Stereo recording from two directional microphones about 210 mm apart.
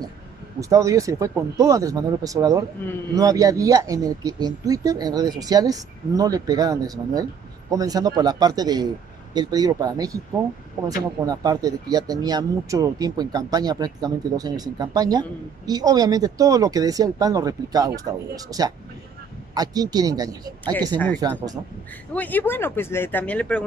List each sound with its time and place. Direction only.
0.6 s speech: 15° right (ahead or behind)
11.2 s speech: 15° right (ahead or behind)
22.1 s speech: 10° left (ahead or behind)